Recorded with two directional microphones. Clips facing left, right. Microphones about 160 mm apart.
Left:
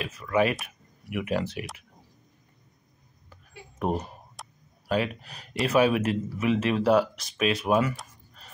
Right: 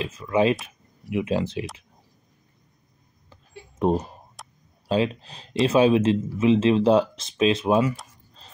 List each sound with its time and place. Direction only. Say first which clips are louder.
0.0 s speech: right 3 dB; 20° right (ahead or behind)
3.8 s speech: right 6 dB; 20° right (ahead or behind)
4.4 s a sound: left 1 dB; centre (ahead or behind)
4.8 s speech: right 4 dB; 25° right (ahead or behind)